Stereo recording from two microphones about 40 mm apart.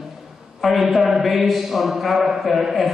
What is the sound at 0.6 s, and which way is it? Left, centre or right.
A woman's voice, centre.